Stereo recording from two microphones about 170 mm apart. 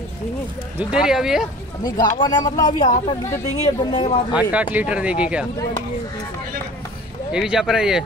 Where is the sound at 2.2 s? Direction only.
25° left (ahead or behind).